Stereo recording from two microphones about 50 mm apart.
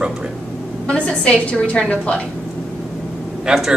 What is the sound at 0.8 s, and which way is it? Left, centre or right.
A woman's voice, left.